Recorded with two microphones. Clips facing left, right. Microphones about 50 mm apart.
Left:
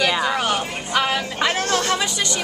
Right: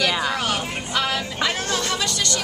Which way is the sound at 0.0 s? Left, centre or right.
Centre.